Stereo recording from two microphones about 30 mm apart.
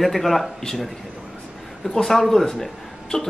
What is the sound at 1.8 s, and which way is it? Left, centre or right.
Speech, centre.